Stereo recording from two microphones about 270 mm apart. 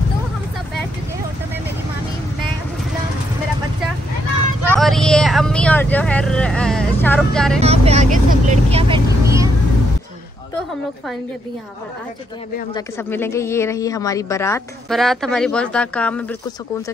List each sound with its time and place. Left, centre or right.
4.7 s speech: centre
7.6 s speech: right
12.7 s a woman's voice: centre